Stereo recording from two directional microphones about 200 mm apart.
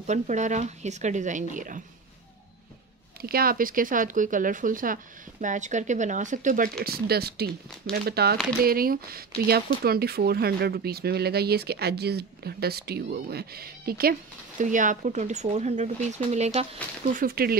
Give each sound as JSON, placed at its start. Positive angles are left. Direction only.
{"t": 0.0, "sound": "speech", "side_deg": -35}
{"t": 3.2, "sound": "speech", "side_deg": -50}
{"t": 6.8, "sound": "speech", "side_deg": -50}